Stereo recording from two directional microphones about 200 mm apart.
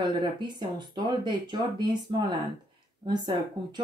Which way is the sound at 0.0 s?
20° right (ahead or behind).